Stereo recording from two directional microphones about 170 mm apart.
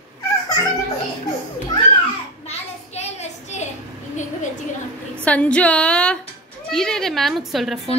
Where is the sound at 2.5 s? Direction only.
40° left (ahead or behind).